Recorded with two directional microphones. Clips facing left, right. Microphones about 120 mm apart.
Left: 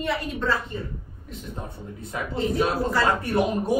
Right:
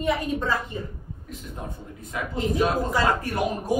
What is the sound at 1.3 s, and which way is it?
Speech, 30° left (ahead or behind).